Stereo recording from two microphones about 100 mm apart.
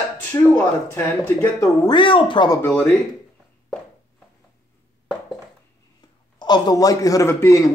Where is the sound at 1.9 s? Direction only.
55° left (ahead or behind).